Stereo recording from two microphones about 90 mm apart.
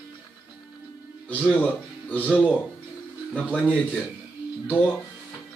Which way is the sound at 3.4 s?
15° left (ahead or behind).